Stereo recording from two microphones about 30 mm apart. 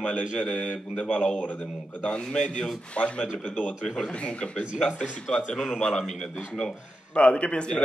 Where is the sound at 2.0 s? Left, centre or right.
Left.